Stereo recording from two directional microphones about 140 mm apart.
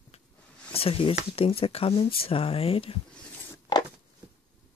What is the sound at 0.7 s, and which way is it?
Speech, 45° left (ahead or behind).